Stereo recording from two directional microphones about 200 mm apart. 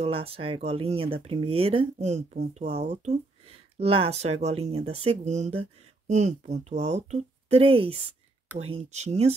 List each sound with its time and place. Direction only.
0.0 s speech: 30° right (ahead or behind)